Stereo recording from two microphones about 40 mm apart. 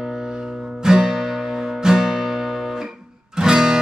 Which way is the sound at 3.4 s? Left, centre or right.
Centre.